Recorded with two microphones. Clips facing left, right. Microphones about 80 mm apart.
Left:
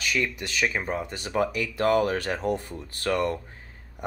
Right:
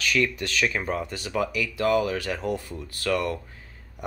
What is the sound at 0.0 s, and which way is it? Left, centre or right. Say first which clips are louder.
A man's voice: right 3 dB; centre.